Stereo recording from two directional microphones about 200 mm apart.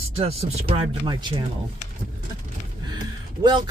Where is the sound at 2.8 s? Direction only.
20° right (ahead or behind).